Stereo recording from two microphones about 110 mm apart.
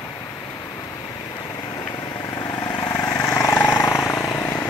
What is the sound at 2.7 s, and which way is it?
Vehicle, 35° left (ahead or behind).